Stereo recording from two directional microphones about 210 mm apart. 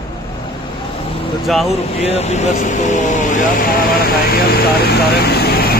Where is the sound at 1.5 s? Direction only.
Centre (ahead or behind).